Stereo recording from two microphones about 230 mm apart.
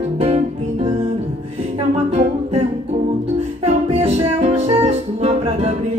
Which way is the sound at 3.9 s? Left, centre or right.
Right.